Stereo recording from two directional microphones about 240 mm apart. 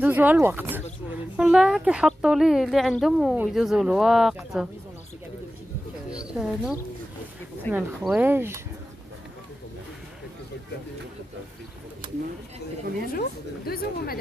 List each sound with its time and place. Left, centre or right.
0.0 s speech: centre
6.0 s a sound: centre
7.7 s speech: centre
13.1 s a woman's voice: left